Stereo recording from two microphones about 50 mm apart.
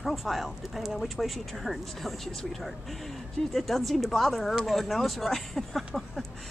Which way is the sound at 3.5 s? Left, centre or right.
Centre.